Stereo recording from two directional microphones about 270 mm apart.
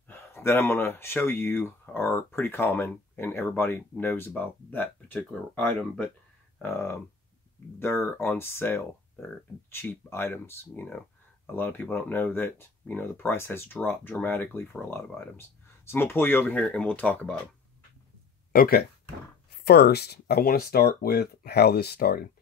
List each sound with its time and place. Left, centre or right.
0.1 s speech: centre
18.5 s speech: left